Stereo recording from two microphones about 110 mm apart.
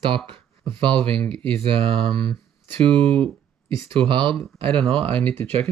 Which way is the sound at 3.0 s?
50° right (ahead or behind).